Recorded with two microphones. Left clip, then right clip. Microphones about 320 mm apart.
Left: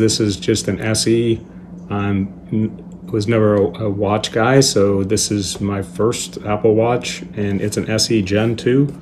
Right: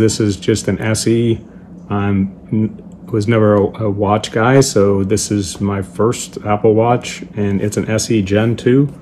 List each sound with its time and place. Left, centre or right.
0.0 s speech: centre